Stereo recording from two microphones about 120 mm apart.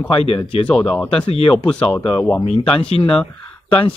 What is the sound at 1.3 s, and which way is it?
Speech, 55° left (ahead or behind).